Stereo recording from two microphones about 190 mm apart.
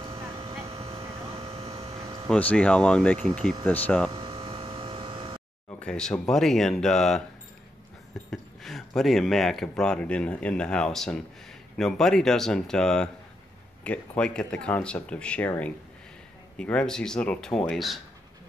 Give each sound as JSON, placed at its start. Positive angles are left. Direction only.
{"t": 0.0, "sound": "vehicle", "side_deg": -30}
{"t": 2.2, "sound": "speech", "side_deg": 5}
{"t": 4.1, "sound": "a sound", "side_deg": -25}
{"t": 5.8, "sound": "speech", "side_deg": 5}
{"t": 8.3, "sound": "speech", "side_deg": 0}